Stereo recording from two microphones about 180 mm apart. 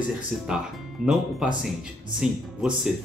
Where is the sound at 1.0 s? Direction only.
5° right (ahead or behind).